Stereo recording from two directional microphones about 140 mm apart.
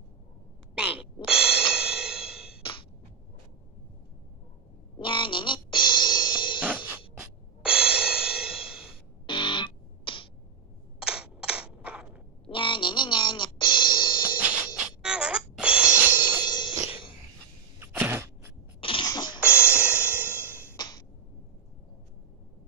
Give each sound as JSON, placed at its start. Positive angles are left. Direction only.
{"t": 0.7, "sound": "music", "side_deg": -5}
{"t": 4.9, "sound": "music", "side_deg": 35}
{"t": 7.2, "sound": "music", "side_deg": -5}
{"t": 9.2, "sound": "music", "side_deg": 35}
{"t": 11.0, "sound": "single-lens reflex camera", "side_deg": -5}
{"t": 12.4, "sound": "music", "side_deg": 35}
{"t": 15.0, "sound": "music", "side_deg": -5}
{"t": 16.4, "sound": "music", "side_deg": 35}
{"t": 17.7, "sound": "a sound", "side_deg": -15}
{"t": 18.8, "sound": "sneeze", "side_deg": 40}
{"t": 19.0, "sound": "music", "side_deg": 30}
{"t": 19.4, "sound": "music", "side_deg": -10}
{"t": 20.4, "sound": "a sound", "side_deg": 15}
{"t": 20.7, "sound": "a sound", "side_deg": 30}